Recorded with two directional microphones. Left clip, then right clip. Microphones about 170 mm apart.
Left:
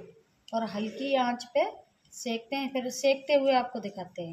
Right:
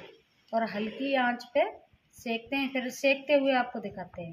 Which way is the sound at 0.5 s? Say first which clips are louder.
Right 2 dB; 15° left (ahead or behind).